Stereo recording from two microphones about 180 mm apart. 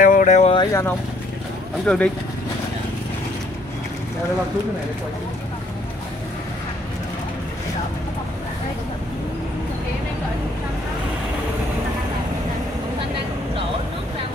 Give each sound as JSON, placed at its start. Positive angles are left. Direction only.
{"t": 0.0, "sound": "vehicle", "side_deg": 50}
{"t": 0.6, "sound": "speech", "side_deg": 15}
{"t": 1.9, "sound": "speech", "side_deg": 5}